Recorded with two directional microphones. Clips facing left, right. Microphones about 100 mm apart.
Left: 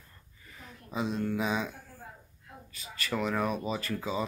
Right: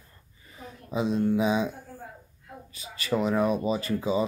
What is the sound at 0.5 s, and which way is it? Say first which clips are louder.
Speech: right 5 dB; 20° right (ahead or behind).